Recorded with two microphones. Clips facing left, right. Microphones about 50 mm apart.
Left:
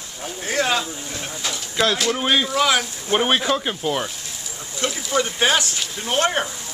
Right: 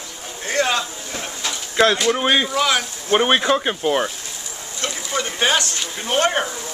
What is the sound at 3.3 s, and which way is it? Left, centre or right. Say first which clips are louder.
Speech: right 3 dB; centre.